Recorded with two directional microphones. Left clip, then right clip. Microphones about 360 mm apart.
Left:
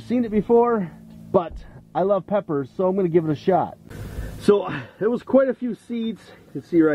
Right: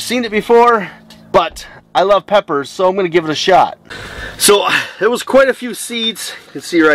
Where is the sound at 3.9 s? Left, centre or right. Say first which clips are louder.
Right 13 dB; centre.